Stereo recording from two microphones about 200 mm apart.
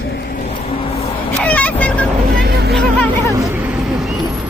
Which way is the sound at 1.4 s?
5° left (ahead or behind).